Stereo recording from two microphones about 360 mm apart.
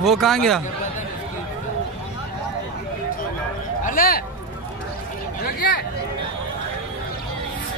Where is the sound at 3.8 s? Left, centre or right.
Left.